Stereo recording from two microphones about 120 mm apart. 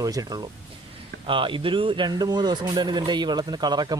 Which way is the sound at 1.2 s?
45° right (ahead or behind).